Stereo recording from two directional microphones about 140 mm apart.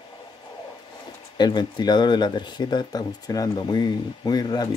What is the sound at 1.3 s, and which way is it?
Speech, 30° left (ahead or behind).